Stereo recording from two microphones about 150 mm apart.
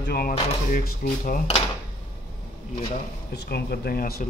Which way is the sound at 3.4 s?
90° left.